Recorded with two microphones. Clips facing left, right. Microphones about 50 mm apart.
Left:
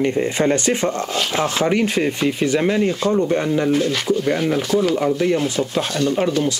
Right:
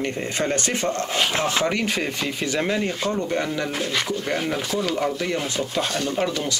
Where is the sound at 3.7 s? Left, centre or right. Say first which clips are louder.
Left 7 dB; centre.